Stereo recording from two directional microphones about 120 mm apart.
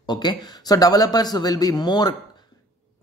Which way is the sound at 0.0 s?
35° left (ahead or behind).